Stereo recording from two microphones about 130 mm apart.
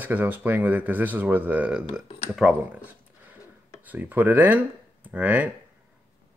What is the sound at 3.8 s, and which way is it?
Speech, 15° right (ahead or behind).